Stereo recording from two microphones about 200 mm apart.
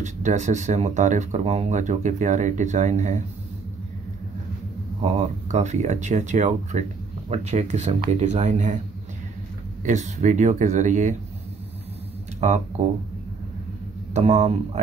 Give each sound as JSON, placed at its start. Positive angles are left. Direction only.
{"t": 0.0, "sound": "speech", "side_deg": -35}
{"t": 5.5, "sound": "speech", "side_deg": -35}
{"t": 9.8, "sound": "speech", "side_deg": -35}
{"t": 12.4, "sound": "speech", "side_deg": -35}
{"t": 14.1, "sound": "speech", "side_deg": -35}